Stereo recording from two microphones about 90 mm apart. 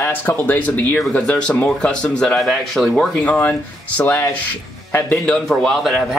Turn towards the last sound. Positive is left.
turn(degrees=0)  # may be behind; listen again after turning